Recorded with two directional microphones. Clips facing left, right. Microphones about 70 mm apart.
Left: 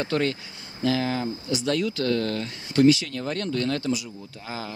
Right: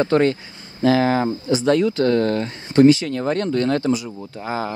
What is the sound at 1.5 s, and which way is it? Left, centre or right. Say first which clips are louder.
Speech: right 8 dB; right.